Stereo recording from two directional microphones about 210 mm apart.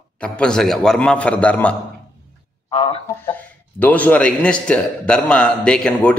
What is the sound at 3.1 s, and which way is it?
A man's voice, 10° left (ahead or behind).